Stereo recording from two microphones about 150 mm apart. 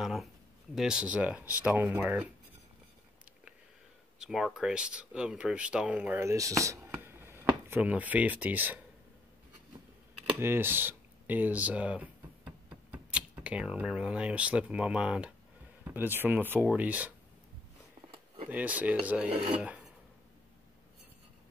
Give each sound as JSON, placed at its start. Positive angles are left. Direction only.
{"t": 0.0, "sound": "a sound", "side_deg": 0}
{"t": 0.7, "sound": "speech", "side_deg": -5}
{"t": 4.2, "sound": "speech", "side_deg": -5}
{"t": 10.4, "sound": "speech", "side_deg": -15}
{"t": 18.5, "sound": "speech", "side_deg": -10}
{"t": 19.3, "sound": "speech", "side_deg": -45}
{"t": 19.6, "sound": "throat clearing", "side_deg": -10}